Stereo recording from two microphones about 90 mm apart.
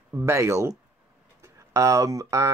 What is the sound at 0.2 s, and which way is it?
Speech, 35° right (ahead or behind).